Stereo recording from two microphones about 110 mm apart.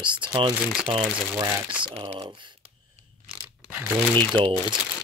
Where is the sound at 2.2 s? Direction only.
45° right (ahead or behind).